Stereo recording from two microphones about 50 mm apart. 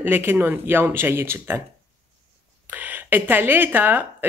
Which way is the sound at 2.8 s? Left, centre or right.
Right.